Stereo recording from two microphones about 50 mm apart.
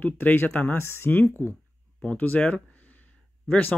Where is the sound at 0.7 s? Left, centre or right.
Left.